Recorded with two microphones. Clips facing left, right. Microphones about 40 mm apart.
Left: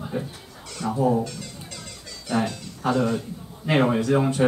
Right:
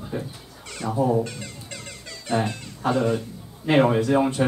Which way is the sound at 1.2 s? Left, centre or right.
Right.